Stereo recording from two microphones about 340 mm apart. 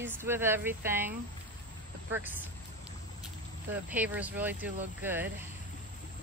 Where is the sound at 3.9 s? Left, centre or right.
Centre.